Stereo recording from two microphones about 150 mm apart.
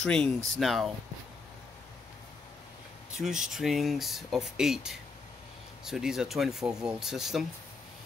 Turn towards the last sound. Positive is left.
turn(degrees=0)  # may be behind; listen again after turning